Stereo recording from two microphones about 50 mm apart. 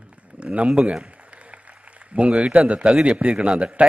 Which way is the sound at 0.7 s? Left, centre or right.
Centre.